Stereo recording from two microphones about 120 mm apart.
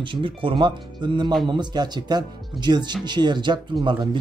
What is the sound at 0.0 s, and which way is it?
Speech, 45° right (ahead or behind).